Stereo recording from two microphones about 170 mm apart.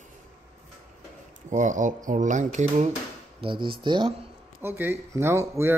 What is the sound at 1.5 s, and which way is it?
Speech, 45° right (ahead or behind).